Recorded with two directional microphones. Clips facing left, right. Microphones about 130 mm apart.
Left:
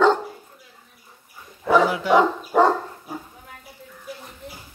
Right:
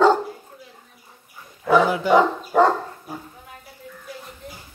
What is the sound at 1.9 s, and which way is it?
Speech, centre (ahead or behind).